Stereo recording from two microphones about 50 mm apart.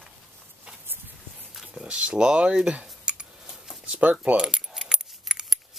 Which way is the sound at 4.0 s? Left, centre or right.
Right.